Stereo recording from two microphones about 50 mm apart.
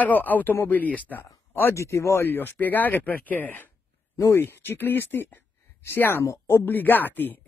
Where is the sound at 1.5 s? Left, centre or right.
Left.